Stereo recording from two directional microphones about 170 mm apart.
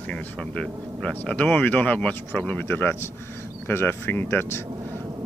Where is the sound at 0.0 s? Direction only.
10° left (ahead or behind).